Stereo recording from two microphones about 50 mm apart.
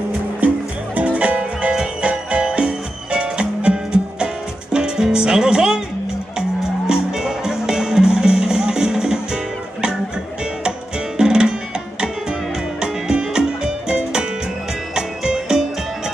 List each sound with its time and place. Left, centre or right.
0.9 s music: right
6.9 s music: centre
11.1 s music: centre
12.8 s music: centre